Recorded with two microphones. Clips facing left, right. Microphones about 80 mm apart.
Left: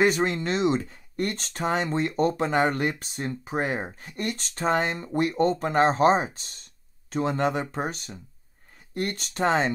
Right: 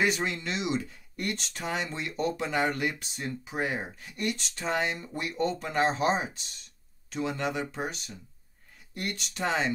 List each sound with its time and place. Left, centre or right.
0.0 s speech: left